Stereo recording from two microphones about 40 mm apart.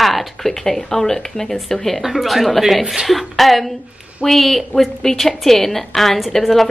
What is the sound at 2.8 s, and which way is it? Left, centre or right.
Speech, centre.